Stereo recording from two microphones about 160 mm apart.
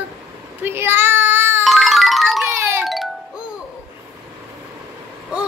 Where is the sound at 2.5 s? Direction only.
15° right (ahead or behind).